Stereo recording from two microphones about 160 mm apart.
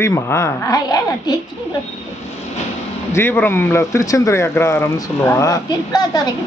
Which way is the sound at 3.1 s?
15° left (ahead or behind).